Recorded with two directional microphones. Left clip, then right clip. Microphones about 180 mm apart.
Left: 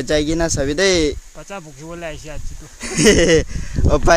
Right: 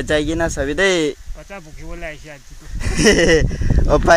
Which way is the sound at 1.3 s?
15° left (ahead or behind).